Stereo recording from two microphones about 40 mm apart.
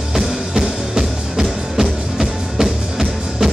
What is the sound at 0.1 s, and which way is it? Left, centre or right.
Music, centre.